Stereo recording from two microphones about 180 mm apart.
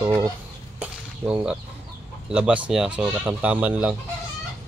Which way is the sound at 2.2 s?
5° right (ahead or behind).